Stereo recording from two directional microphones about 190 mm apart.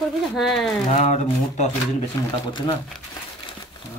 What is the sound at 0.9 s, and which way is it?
Speech, 35° left (ahead or behind).